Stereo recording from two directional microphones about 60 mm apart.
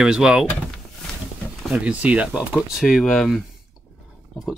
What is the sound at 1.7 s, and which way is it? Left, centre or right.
Speech, centre.